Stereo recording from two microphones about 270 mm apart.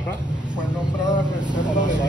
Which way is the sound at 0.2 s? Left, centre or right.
Centre.